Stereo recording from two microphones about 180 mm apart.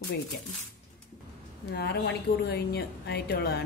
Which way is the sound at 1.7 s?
65° left (ahead or behind).